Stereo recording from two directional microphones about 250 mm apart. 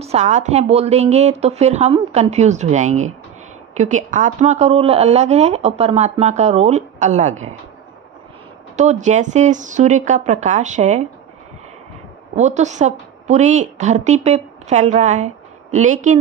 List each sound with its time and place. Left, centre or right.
0.0 s speech: right
8.7 s speech: right
12.4 s a woman's voice: right